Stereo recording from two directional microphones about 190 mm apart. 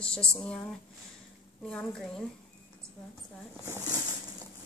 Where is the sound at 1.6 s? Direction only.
5° left (ahead or behind).